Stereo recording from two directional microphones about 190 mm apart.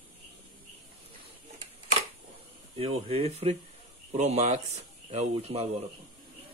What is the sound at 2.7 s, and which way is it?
Speech, 30° right (ahead or behind).